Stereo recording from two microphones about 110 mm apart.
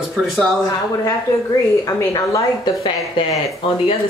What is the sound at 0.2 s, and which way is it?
Speech, centre (ahead or behind).